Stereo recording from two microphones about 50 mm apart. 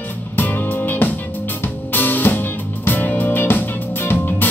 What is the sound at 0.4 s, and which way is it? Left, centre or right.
Music, left.